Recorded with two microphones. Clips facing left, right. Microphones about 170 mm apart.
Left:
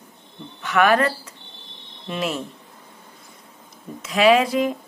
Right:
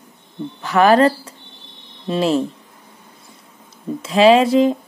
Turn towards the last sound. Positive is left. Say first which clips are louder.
# right 5 dB
turn(degrees=-25)  # may be behind; listen again after turning